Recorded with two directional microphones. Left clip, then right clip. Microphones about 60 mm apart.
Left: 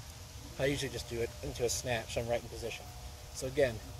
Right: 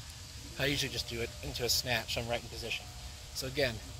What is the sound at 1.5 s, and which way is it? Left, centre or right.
Speech, left.